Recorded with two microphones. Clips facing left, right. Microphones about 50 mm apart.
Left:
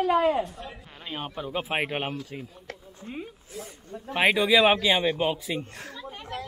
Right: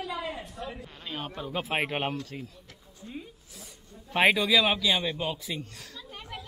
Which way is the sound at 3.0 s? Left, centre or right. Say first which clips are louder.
Left 4 dB; left.